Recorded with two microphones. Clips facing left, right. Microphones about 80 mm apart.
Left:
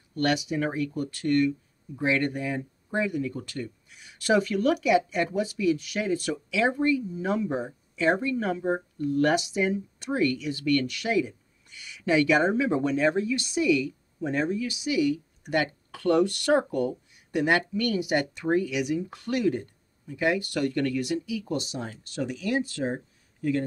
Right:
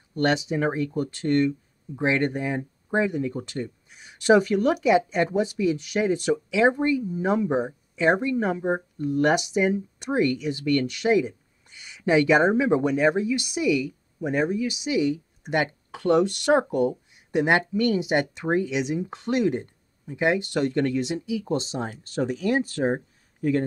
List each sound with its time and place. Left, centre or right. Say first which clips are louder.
0.1 s speech: right 3 dB; right